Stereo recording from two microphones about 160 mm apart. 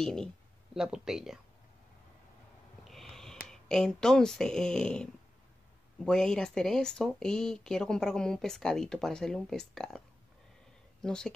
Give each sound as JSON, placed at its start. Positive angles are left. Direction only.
{"t": 0.0, "sound": "speech", "side_deg": 5}
{"t": 2.8, "sound": "snort", "side_deg": 0}
{"t": 3.4, "sound": "speech", "side_deg": 5}